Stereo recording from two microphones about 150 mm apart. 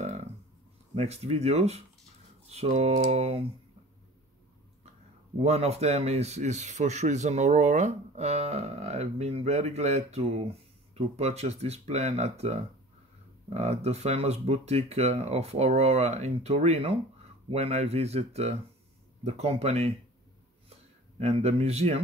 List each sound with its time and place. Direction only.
0.0 s a sound: 45° right (ahead or behind)
0.9 s speech: 45° right (ahead or behind)
5.4 s speech: 45° right (ahead or behind)
21.2 s speech: 45° right (ahead or behind)